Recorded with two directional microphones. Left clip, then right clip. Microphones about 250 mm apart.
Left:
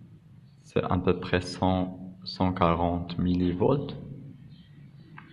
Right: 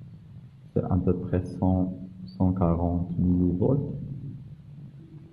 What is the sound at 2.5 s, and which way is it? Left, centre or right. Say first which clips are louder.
Speech: left 4 dB; centre.